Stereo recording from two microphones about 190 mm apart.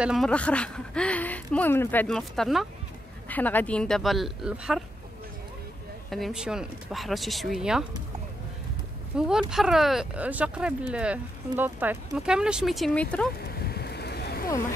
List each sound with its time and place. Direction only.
0.0 s speech: centre (ahead or behind)
6.0 s speech: centre (ahead or behind)
9.1 s speech: 5° right (ahead or behind)
13.6 s a sound: 55° left (ahead or behind)